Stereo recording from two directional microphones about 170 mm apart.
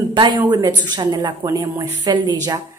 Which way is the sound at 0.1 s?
25° right (ahead or behind).